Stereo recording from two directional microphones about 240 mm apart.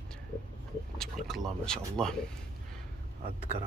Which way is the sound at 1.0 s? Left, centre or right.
Centre.